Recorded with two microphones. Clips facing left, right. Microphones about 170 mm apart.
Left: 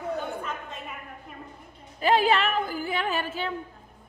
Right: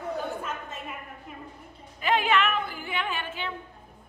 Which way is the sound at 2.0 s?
35° left (ahead or behind).